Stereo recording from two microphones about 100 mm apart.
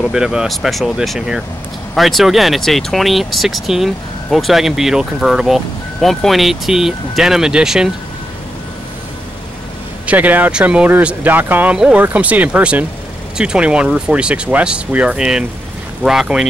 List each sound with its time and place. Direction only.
0.1 s speech: 5° right (ahead or behind)
10.0 s speech: 15° right (ahead or behind)